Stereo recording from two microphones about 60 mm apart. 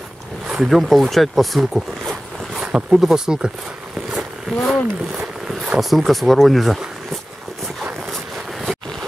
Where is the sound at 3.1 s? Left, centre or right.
Centre.